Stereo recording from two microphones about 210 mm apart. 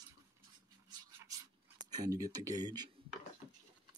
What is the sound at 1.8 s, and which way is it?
Speech, 20° right (ahead or behind).